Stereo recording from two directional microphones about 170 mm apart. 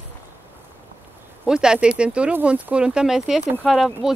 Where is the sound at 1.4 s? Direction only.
5° right (ahead or behind).